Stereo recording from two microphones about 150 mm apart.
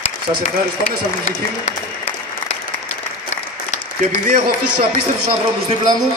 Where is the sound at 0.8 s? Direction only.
50° left (ahead or behind).